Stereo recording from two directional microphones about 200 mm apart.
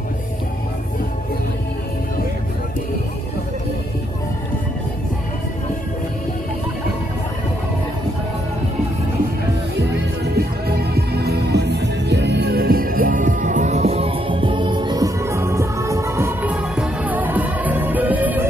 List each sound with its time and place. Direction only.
9.8 s music: 55° right (ahead or behind); by 18.4 s 10° right (ahead or behind)